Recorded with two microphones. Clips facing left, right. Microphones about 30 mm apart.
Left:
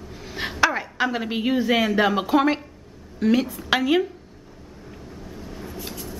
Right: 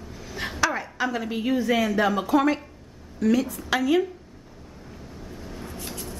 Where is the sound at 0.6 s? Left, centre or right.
Left.